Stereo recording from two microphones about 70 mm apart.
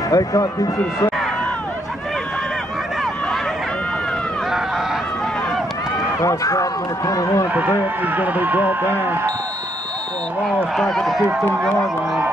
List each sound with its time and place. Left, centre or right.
0.1 s a man's voice: left
6.2 s speech: left
8.0 s speech: right
10.4 s speech: centre
11.2 s speech: centre